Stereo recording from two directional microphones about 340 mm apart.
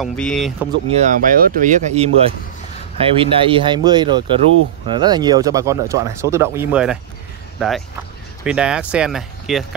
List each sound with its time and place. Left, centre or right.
0.0 s speech: centre
0.8 s speech: centre